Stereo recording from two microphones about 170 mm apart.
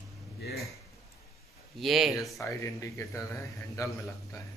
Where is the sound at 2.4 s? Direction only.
20° left (ahead or behind).